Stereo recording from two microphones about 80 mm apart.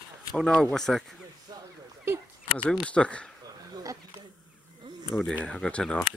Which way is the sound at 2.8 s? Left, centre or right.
Centre.